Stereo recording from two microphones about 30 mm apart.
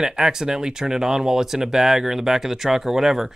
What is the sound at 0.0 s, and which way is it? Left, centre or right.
Speech, right.